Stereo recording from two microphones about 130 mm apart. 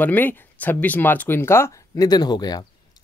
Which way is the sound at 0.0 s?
15° left (ahead or behind).